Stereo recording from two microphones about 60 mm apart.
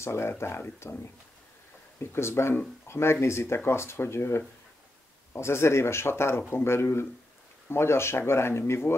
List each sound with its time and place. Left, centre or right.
0.0 s speech: left
2.0 s speech: left